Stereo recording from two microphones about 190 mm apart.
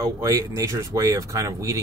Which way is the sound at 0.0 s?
15° right (ahead or behind).